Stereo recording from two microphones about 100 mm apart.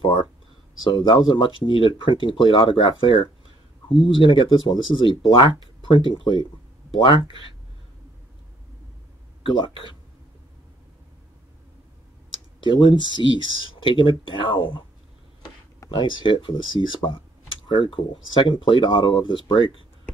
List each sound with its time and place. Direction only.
0.0 s speech: 60° left (ahead or behind)
9.4 s speech: 60° left (ahead or behind)
12.8 s speech: 50° left (ahead or behind)
15.9 s speech: 55° left (ahead or behind)